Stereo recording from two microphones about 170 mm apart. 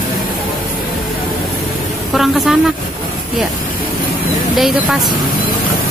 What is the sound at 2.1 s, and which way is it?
Speech, centre (ahead or behind).